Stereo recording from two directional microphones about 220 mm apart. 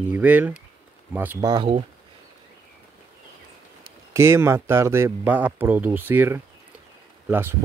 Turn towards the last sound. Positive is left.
turn(degrees=-10)  # may be behind; listen again after turning